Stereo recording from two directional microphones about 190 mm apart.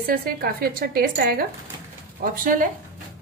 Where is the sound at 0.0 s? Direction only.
50° right (ahead or behind).